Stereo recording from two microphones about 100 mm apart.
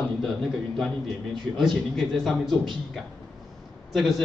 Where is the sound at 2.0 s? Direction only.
Centre (ahead or behind).